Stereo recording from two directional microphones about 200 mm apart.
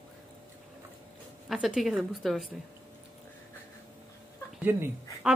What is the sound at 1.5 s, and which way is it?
A woman's voice, centre (ahead or behind).